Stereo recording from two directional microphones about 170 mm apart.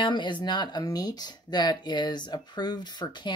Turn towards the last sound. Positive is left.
turn(degrees=25)  # may be behind; listen again after turning